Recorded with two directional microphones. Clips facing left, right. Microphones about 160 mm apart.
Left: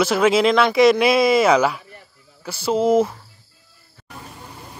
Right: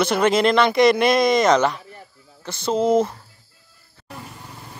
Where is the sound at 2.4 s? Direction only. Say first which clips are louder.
Left 1 dB; 5° left (ahead or behind).